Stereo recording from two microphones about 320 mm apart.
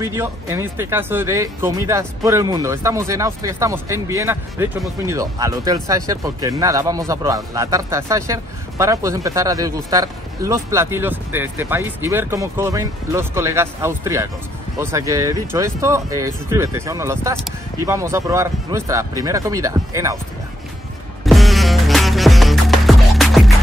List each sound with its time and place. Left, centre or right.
0.0 s speech: centre
21.3 s music: centre